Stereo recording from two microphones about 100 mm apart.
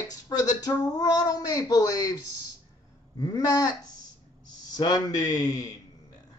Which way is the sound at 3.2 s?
40° left (ahead or behind).